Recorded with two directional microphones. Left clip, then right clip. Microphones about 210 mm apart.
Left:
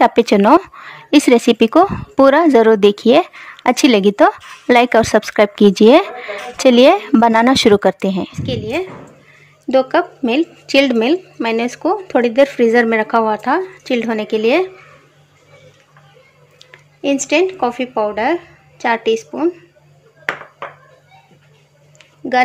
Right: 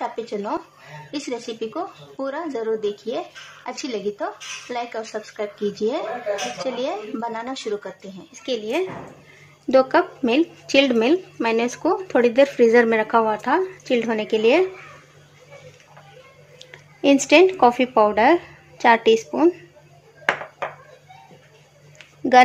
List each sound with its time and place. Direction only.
0.0 s speech: 55° left (ahead or behind)
8.4 s speech: 15° left (ahead or behind)
16.5 s speech: centre (ahead or behind)
22.2 s speech: 5° right (ahead or behind)